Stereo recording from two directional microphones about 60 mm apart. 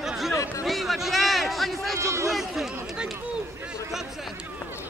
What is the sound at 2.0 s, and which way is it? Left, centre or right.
Speech, right.